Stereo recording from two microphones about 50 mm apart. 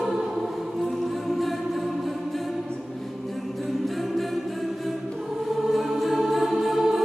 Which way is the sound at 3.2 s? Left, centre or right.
Centre.